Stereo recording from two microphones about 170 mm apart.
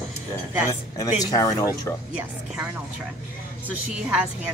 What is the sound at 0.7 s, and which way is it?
Speech, 20° left (ahead or behind).